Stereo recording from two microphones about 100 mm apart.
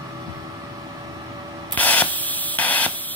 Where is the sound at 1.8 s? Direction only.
15° left (ahead or behind).